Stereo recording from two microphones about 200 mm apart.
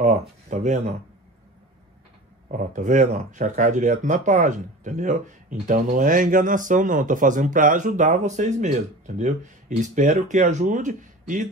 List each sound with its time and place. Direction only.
0.0 s speech: 35° right (ahead or behind)
2.4 s speech: 40° right (ahead or behind)